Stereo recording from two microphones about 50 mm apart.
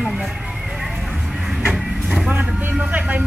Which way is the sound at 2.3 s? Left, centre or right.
Right.